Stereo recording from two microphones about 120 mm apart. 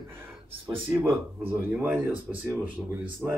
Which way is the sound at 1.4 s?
15° right (ahead or behind).